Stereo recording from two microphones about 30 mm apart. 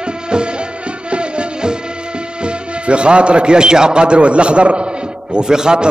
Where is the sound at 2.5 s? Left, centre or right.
Right.